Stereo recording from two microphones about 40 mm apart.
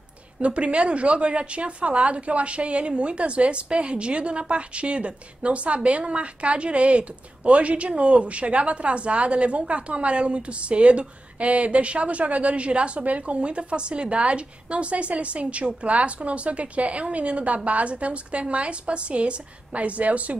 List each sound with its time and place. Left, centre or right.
0.4 s a woman's voice: right